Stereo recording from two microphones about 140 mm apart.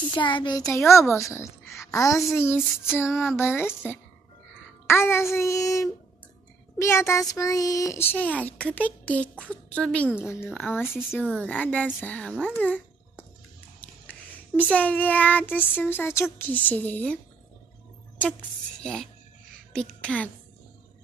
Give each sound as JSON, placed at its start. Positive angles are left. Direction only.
{"t": 0.1, "sound": "a woman's voice", "side_deg": 35}
{"t": 13.7, "sound": "child singing", "side_deg": 10}
{"t": 18.8, "sound": "speech", "side_deg": 5}